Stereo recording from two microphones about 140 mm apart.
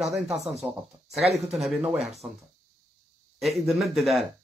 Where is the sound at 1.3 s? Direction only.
50° right (ahead or behind).